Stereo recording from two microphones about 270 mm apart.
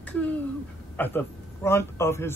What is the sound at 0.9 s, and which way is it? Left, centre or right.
A man's voice, centre.